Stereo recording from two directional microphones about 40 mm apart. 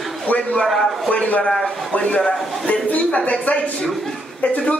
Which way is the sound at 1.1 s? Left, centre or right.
Left.